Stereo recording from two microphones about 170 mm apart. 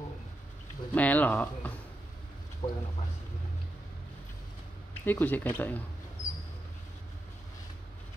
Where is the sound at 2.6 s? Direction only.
40° left (ahead or behind).